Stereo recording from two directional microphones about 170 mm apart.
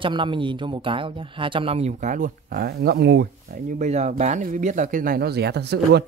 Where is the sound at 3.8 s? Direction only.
40° right (ahead or behind); by 6.0 s 75° right (ahead or behind).